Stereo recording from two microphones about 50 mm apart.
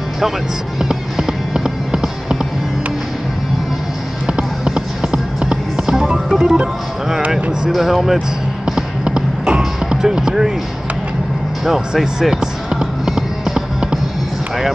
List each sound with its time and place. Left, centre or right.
0.7 s music: centre
4.3 s music: centre
6.3 s speech: centre
7.7 s speech: centre
9.0 s music: right
9.8 s speech: centre
11.6 s basketball bounce: centre